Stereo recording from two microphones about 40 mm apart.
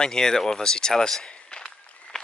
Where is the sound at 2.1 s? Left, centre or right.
Centre.